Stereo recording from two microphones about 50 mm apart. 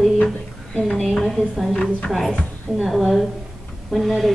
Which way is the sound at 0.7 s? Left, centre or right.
Centre.